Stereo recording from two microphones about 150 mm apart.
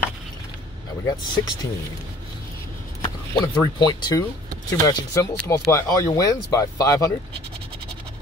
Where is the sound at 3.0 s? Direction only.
25° left (ahead or behind).